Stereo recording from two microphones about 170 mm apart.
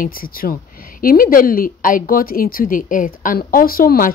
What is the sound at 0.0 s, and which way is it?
Speech, 55° left (ahead or behind).